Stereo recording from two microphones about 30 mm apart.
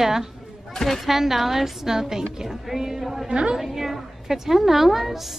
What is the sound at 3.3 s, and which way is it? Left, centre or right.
Speech, right.